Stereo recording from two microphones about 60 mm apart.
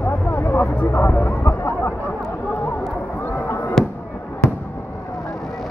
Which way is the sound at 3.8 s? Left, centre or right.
Centre.